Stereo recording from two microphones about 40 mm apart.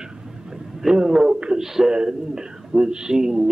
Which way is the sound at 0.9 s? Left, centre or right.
Centre.